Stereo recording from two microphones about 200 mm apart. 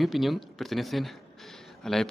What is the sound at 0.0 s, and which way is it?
Speech, centre (ahead or behind).